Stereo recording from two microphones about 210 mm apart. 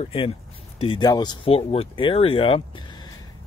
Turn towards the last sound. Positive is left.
turn(degrees=20)  # may be behind; listen again after turning